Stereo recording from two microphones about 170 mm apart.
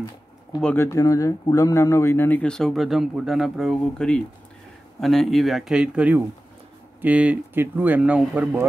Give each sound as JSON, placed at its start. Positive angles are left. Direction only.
{"t": 0.6, "sound": "speech", "side_deg": 10}